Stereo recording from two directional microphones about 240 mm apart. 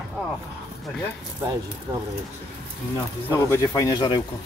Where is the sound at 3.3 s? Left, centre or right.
Centre.